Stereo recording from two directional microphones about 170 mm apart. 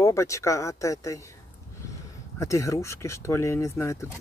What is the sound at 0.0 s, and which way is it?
Speech, 15° left (ahead or behind).